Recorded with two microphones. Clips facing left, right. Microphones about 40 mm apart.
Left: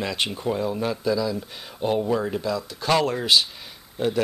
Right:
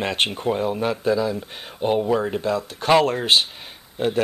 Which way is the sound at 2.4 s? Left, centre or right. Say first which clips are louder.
Right 3 dB; right.